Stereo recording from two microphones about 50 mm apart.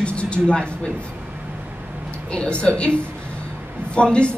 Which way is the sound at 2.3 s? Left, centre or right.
Centre.